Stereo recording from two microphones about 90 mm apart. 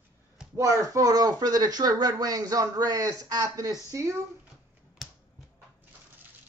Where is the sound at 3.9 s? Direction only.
30° right (ahead or behind).